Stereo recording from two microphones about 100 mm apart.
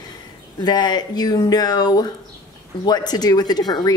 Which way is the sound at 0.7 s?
45° left (ahead or behind).